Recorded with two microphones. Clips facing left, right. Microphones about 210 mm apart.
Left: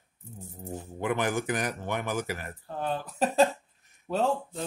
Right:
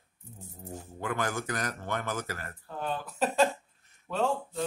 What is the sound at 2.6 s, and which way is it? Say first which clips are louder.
Speech: left 2 dB; 35° left (ahead or behind).